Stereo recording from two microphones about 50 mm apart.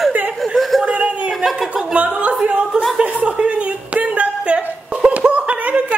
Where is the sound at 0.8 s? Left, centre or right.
Right.